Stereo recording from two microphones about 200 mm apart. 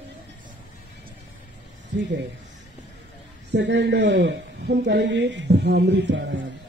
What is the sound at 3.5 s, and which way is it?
A man's voice, 60° right (ahead or behind).